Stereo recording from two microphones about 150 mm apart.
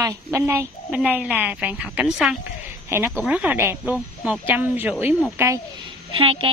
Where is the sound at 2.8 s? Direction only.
15° right (ahead or behind).